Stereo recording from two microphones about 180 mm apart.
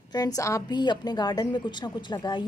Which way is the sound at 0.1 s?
20° left (ahead or behind).